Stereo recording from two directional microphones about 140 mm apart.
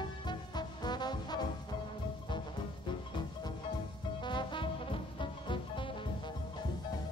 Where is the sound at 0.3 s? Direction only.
30° left (ahead or behind).